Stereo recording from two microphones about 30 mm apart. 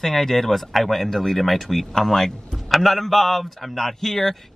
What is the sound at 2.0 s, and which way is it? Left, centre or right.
Speech, centre.